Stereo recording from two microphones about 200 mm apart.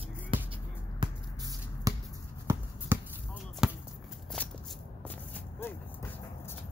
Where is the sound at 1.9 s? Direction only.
15° right (ahead or behind).